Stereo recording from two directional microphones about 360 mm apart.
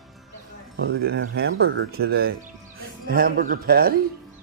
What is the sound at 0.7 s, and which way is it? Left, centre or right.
Speech, right.